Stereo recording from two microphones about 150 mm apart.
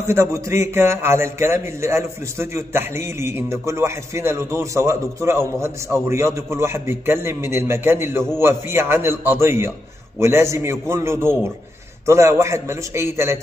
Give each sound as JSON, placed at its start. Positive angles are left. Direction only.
{"t": 0.0, "sound": "a man's voice", "side_deg": -20}